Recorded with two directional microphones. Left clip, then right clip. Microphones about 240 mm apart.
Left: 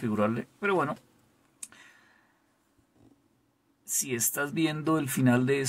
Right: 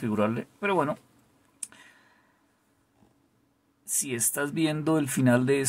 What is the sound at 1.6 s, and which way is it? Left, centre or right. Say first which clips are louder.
Clicking: right 2 dB; centre.